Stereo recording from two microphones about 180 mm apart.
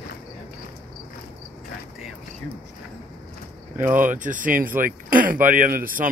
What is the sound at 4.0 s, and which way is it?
Speech, 45° right (ahead or behind).